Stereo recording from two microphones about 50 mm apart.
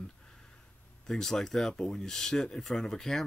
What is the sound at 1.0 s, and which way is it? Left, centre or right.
Speech, centre.